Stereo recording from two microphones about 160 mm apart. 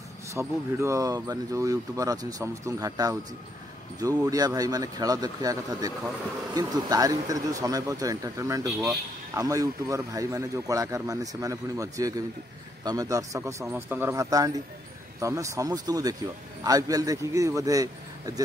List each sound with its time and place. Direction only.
0.3 s speech: 20° right (ahead or behind)